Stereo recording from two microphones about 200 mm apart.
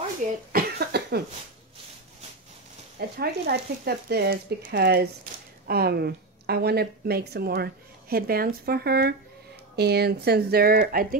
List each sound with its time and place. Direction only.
0.5 s cough: 50° right (ahead or behind)
3.2 s speech: 55° right (ahead or behind)